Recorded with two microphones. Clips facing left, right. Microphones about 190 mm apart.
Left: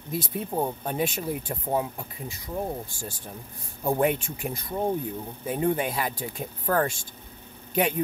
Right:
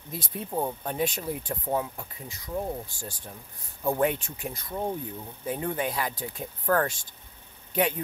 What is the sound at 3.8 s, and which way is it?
Speech, 15° left (ahead or behind).